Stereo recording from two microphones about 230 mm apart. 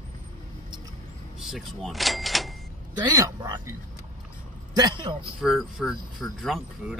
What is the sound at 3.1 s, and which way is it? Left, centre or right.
Speech, centre.